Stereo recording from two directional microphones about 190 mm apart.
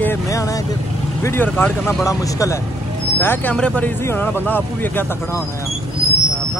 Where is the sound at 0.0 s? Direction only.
15° left (ahead or behind).